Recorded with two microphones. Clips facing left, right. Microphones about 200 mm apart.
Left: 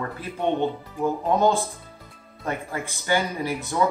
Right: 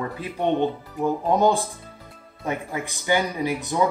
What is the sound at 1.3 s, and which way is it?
Speech, 15° right (ahead or behind).